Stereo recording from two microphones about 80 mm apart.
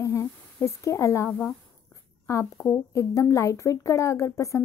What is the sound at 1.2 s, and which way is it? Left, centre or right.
Speech, centre.